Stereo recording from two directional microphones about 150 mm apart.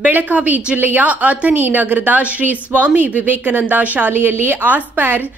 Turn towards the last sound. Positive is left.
turn(degrees=-10)  # may be behind; listen again after turning